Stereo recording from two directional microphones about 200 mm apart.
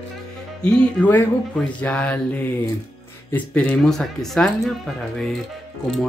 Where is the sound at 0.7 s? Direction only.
5° left (ahead or behind).